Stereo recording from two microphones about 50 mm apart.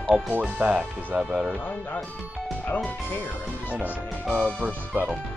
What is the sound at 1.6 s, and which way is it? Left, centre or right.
Speech, left.